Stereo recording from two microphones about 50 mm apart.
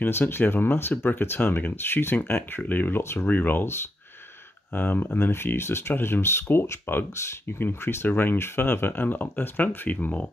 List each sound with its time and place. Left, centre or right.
0.0 s speech: left
3.0 s speech: left
3.3 s speech: left
4.7 s speech: left
6.5 s speech: left
7.5 s speech: left